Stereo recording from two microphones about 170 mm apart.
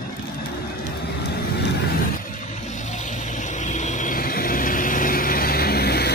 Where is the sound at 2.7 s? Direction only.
45° left (ahead or behind).